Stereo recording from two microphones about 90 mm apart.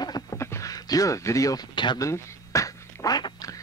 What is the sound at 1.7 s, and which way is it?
Speech, 60° left (ahead or behind).